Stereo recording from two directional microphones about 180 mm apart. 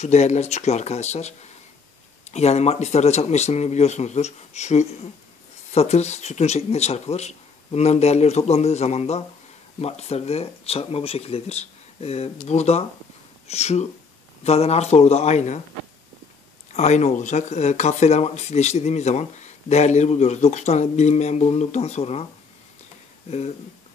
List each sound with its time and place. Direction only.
0.0 s speech: 40° left (ahead or behind)
16.7 s speech: 40° left (ahead or behind)